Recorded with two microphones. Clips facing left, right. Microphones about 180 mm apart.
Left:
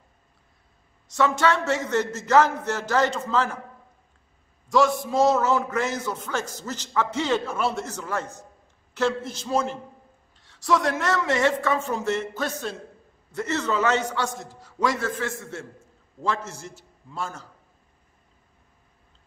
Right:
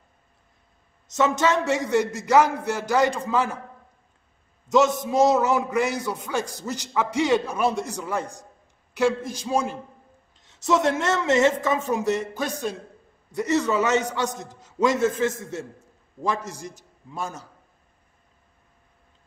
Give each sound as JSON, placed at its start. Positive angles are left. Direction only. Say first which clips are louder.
{"t": 1.0, "sound": "a man's voice", "louder": "even", "side_deg": -20}
{"t": 4.6, "sound": "a man's voice", "louder": "right 1 dB", "side_deg": -20}